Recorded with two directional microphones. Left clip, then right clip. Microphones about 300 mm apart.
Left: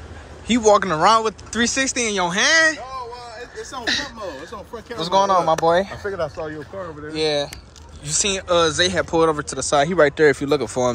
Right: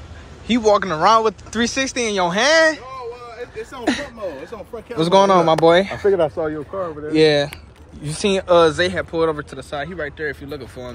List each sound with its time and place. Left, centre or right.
0.6 s speech: centre
3.8 s speech: right
8.0 s speech: centre